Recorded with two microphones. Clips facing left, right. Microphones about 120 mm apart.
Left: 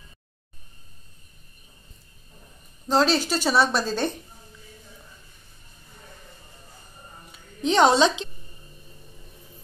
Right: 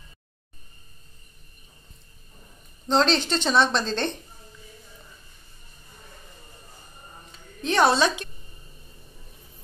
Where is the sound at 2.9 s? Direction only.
5° left (ahead or behind).